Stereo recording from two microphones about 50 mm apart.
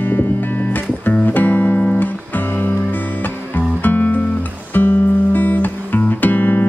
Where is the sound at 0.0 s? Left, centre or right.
Left.